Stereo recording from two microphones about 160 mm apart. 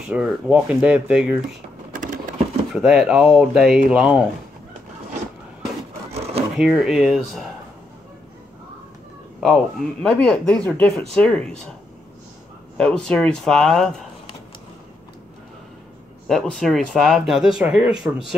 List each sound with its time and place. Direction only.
0.0 s speech: 5° right (ahead or behind)
1.9 s a sound: 55° right (ahead or behind)
2.7 s speech: centre (ahead or behind)
6.6 s speech: 5° right (ahead or behind)
9.5 s speech: 5° left (ahead or behind)
12.7 s speech: 5° left (ahead or behind)
16.3 s speech: 5° left (ahead or behind)